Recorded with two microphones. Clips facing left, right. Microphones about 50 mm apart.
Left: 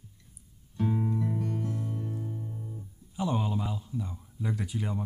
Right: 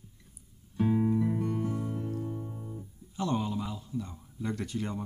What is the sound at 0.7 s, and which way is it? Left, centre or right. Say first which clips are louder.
Music: right 3 dB; centre.